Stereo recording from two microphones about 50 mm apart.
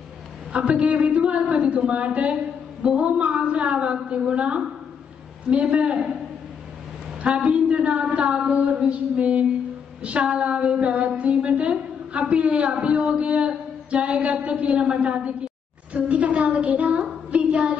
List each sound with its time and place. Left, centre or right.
0.5 s a woman's voice: right
7.2 s a woman's voice: right
17.3 s child singing: right